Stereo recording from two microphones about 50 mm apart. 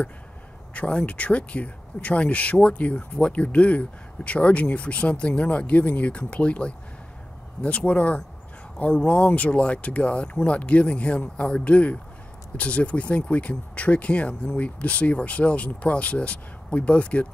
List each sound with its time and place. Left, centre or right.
0.7 s speech: left